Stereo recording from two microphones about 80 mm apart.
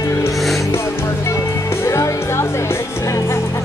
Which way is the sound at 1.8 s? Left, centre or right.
Left.